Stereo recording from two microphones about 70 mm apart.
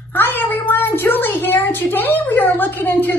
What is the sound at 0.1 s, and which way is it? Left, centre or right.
A woman's voice, left.